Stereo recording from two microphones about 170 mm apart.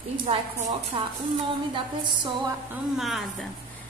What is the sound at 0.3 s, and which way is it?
Speech, 35° right (ahead or behind).